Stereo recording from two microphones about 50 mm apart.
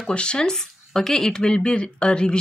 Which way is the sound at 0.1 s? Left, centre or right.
Centre.